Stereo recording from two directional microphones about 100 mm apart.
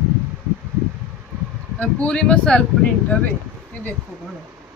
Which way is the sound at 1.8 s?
10° left (ahead or behind).